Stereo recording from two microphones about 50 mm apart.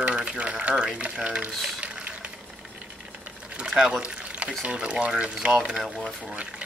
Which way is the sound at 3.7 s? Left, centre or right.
Centre.